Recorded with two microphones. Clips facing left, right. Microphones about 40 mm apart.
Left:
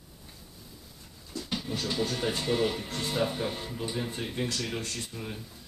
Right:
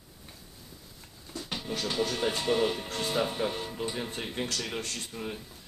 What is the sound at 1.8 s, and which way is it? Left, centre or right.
Speech, centre.